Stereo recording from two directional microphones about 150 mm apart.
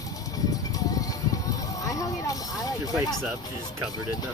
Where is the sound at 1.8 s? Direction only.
20° left (ahead or behind).